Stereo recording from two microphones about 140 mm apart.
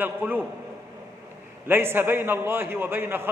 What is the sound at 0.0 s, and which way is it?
Speech, 15° right (ahead or behind).